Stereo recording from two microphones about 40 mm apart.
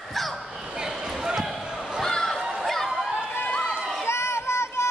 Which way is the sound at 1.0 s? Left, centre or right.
Centre.